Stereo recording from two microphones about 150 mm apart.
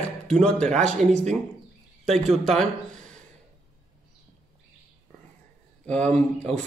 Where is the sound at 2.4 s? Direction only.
5° left (ahead or behind).